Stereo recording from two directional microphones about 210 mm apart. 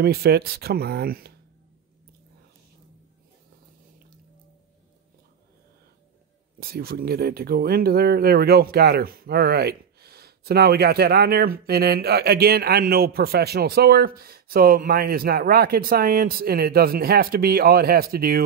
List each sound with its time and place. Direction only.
0.0 s speech: 50° right (ahead or behind)
6.6 s speech: 45° right (ahead or behind)